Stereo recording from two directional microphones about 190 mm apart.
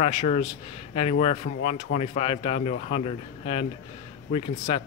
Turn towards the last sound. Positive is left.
turn(degrees=30)  # may be behind; listen again after turning